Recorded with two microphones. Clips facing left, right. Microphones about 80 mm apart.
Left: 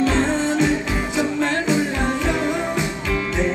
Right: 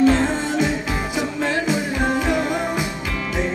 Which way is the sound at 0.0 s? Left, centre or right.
Centre.